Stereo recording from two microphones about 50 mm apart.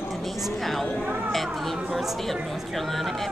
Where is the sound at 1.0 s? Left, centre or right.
Right.